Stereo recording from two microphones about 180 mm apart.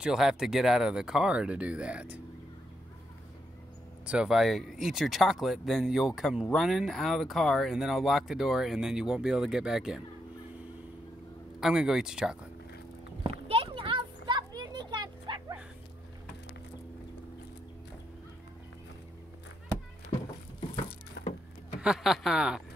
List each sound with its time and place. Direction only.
0.0 s speech: 5° right (ahead or behind)
4.0 s speech: 5° right (ahead or behind)
11.6 s speech: 5° right (ahead or behind)
13.5 s a sound: 30° right (ahead or behind)
21.8 s speech: centre (ahead or behind)